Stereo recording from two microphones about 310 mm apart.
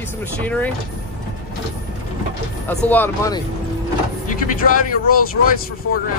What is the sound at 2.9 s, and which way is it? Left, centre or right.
Speech, centre.